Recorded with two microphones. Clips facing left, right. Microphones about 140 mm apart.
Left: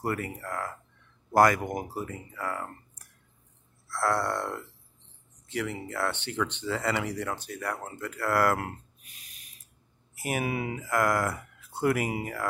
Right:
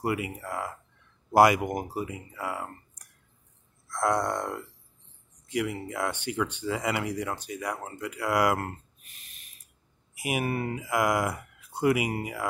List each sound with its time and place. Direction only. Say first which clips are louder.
0.0 s speech: right 2 dB; 10° right (ahead or behind)
3.9 s speech: right 1 dB; 15° right (ahead or behind)
9.1 s a sound: even; centre (ahead or behind)
10.4 s speech: right 1 dB; 5° left (ahead or behind)
10.9 s speech: even; 10° right (ahead or behind)
11.3 s a sound: right 1 dB; centre (ahead or behind)